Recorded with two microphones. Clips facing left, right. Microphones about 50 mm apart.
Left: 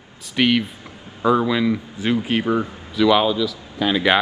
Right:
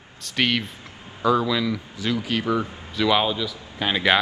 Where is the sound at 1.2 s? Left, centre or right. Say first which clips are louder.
Left 3 dB; left.